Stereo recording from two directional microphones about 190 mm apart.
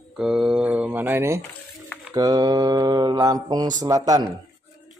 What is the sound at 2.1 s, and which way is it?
Mantra, 20° right (ahead or behind).